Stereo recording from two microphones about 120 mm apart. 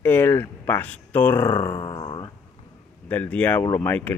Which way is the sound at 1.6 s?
40° left (ahead or behind).